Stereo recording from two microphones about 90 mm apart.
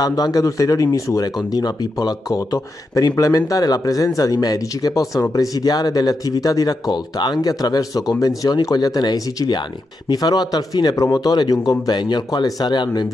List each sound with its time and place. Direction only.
0.0 s speech: 45° left (ahead or behind)
11.8 s speech: 55° left (ahead or behind)